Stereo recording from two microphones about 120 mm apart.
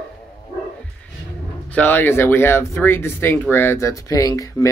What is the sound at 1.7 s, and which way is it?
Speech, 15° left (ahead or behind).